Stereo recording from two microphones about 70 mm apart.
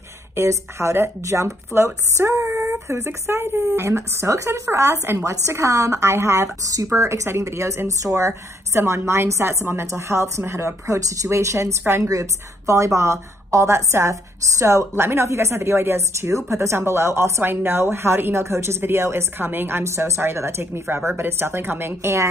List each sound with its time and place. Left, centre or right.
0.4 s a woman's voice: right
11.2 s a woman's voice: right
12.1 s a woman's voice: right